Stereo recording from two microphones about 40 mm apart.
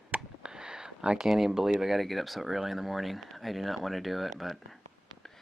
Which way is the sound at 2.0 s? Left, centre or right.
Centre.